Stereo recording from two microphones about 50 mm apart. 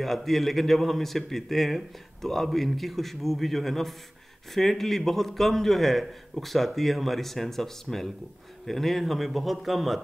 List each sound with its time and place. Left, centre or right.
0.0 s a man's voice: centre